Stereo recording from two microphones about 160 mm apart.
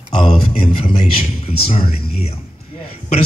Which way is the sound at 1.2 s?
40° left (ahead or behind).